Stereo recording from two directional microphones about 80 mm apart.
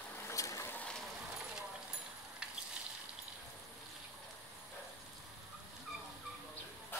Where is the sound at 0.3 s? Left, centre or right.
Left.